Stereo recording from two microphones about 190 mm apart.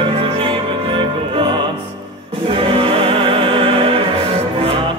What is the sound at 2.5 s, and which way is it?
Music, 30° right (ahead or behind).